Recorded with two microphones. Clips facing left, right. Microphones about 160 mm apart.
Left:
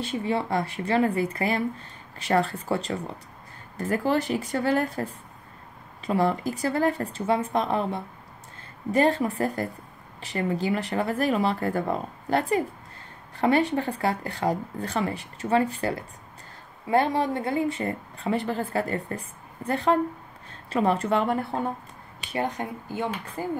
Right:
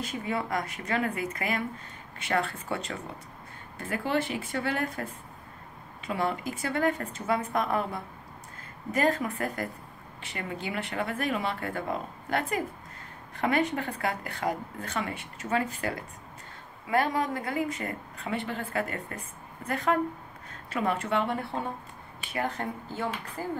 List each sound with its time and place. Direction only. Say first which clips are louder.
0.0 s a woman's voice: left 5 dB; 30° left (ahead or behind)
22.3 s a woman's voice: left 3 dB; 20° left (ahead or behind)